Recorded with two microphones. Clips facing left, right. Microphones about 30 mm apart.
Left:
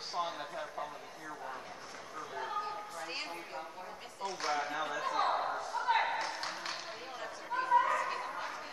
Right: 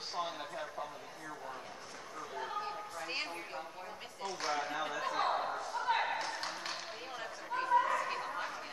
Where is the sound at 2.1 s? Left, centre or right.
Centre.